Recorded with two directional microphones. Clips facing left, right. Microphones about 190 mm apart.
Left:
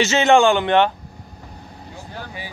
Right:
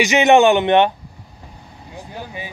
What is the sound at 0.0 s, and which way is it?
Speech, 15° right (ahead or behind).